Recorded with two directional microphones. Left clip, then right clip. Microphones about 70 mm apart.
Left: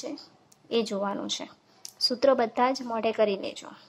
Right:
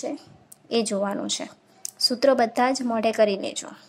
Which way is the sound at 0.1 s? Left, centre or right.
Right.